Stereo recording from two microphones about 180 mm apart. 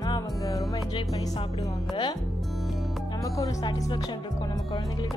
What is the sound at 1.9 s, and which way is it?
Music, 25° left (ahead or behind).